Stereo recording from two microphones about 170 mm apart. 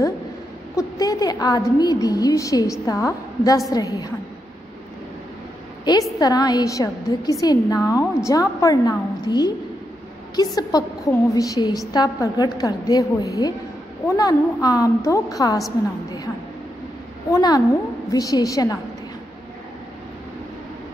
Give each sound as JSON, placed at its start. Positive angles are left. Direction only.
{"t": 0.7, "sound": "a woman's voice", "side_deg": 20}
{"t": 6.1, "sound": "a woman's voice", "side_deg": 20}
{"t": 17.3, "sound": "a woman's voice", "side_deg": 20}